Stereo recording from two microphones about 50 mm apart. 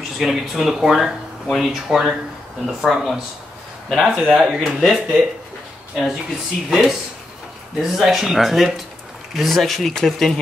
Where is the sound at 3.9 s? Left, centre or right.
Centre.